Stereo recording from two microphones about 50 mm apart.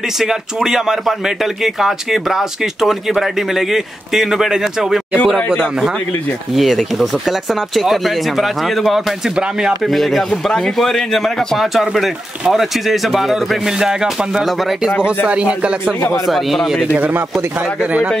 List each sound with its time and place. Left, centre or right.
0.2 s speech: centre
5.2 s speech: centre
9.4 s speech: centre
9.8 s speech: centre
15.2 s speech: right
16.3 s speech: centre